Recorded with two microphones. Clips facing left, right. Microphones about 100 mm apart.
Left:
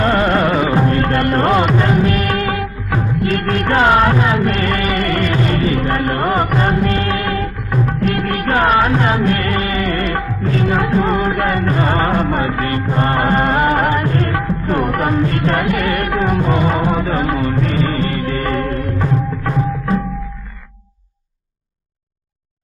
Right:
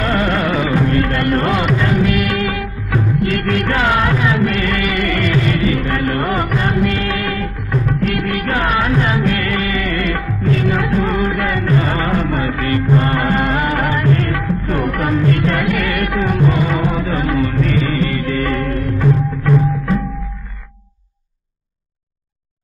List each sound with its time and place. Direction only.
0.0 s music: 35° left (ahead or behind)